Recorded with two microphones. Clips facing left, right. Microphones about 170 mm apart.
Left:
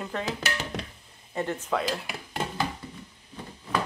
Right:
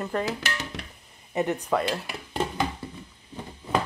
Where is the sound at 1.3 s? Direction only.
15° right (ahead or behind).